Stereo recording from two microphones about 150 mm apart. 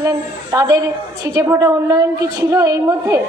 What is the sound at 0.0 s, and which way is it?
A woman's voice, 25° right (ahead or behind).